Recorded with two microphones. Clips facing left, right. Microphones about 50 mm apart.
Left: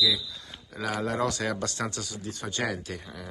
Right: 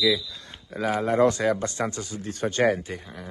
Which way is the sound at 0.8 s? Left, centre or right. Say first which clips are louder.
Right 7 dB; right.